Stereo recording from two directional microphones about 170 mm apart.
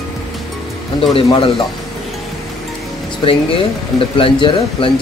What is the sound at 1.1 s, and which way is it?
Speech, 35° left (ahead or behind).